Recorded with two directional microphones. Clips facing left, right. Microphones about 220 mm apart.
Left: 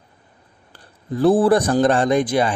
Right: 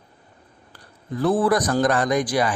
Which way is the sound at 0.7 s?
30° left (ahead or behind).